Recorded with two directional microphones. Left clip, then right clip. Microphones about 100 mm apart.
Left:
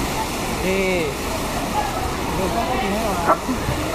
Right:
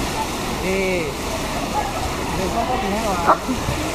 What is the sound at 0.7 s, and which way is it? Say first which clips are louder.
Speech: even; 40° left (ahead or behind).